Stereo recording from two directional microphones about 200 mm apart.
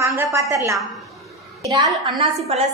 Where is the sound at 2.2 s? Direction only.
30° right (ahead or behind).